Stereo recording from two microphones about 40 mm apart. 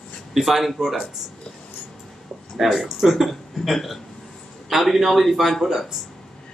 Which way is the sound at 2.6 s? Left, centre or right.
Centre.